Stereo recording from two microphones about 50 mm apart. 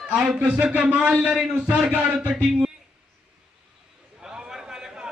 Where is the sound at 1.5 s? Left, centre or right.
Right.